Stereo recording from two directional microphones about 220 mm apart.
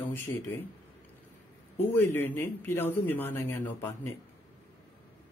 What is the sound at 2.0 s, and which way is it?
Speech, 10° left (ahead or behind).